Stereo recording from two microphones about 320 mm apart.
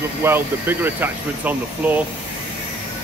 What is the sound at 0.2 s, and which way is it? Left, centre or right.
Speech, centre.